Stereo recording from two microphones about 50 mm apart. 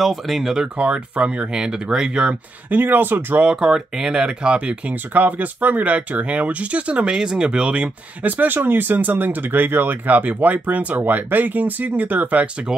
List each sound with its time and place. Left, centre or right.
0.0 s speech: centre
0.7 s speech: right
2.7 s speech: right
3.3 s speech: centre
8.2 s speech: right